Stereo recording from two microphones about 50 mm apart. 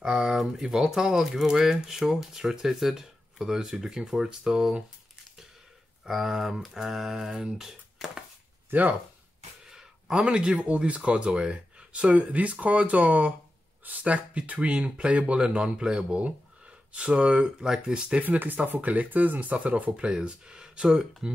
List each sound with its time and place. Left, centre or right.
0.0 s speech: centre
6.0 s speech: centre
8.6 s speech: right
9.7 s a sound: centre
10.2 s speech: centre
18.2 s speech: right; by 21.1 s centre